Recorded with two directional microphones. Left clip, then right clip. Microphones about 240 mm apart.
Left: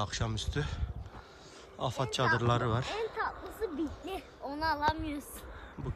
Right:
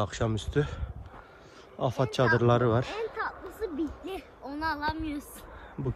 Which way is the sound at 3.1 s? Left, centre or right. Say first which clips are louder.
Right 1 dB; left.